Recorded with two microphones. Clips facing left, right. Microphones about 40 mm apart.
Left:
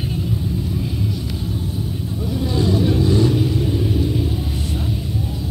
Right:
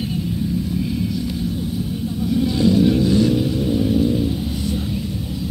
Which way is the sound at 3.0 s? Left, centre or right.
Left.